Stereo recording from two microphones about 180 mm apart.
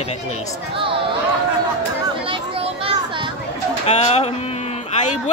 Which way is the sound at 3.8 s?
35° left (ahead or behind).